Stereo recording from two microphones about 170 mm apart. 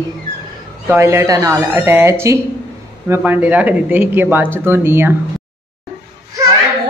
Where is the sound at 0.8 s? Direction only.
15° right (ahead or behind).